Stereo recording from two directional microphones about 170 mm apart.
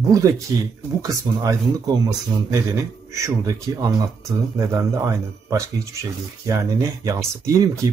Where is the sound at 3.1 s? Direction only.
20° right (ahead or behind).